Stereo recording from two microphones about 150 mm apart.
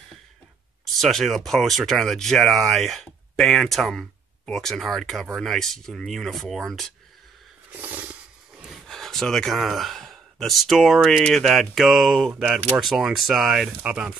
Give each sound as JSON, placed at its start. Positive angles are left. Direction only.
{"t": 0.9, "sound": "speech", "side_deg": 0}
{"t": 7.7, "sound": "speech", "side_deg": -10}